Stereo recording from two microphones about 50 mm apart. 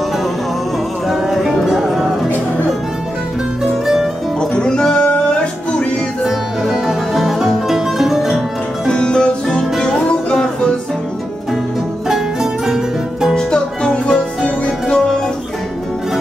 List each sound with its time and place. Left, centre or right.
1.0 s music: centre
3.8 s music: centre
4.4 s music: centre
6.2 s music: centre
8.8 s music: centre
12.1 s music: centre
13.3 s music: centre